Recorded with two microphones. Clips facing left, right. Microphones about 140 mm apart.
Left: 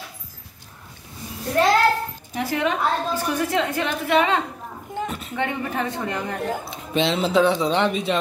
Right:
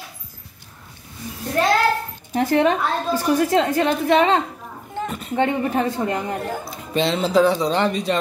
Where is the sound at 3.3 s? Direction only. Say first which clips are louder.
Right 7 dB; 35° right (ahead or behind).